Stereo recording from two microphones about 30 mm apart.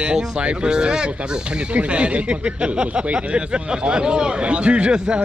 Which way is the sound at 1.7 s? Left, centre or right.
Right.